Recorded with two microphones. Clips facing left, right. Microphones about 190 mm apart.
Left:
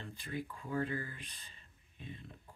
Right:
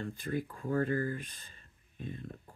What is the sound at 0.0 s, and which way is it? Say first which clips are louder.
Speech: right 7 dB; 45° right (ahead or behind).